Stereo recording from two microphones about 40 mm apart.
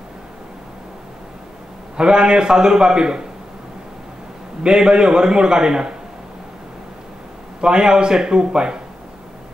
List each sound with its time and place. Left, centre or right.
2.0 s a man's voice: right
4.6 s a man's voice: centre
7.6 s a man's voice: centre